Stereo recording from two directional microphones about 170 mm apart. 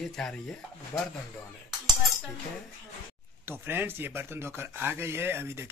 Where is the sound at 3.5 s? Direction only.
15° right (ahead or behind).